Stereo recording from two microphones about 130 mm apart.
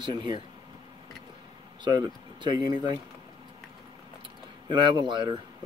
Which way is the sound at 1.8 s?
35° right (ahead or behind).